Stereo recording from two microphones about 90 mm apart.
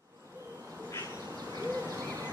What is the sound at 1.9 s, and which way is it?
Hoot, 35° right (ahead or behind).